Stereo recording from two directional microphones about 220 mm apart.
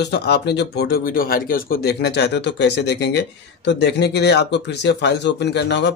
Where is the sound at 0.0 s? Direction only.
50° left (ahead or behind).